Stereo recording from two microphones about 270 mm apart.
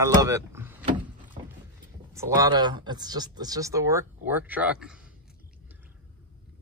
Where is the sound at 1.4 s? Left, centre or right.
Right.